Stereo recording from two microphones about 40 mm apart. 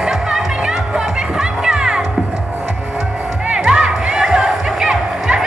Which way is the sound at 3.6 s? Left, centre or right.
Centre.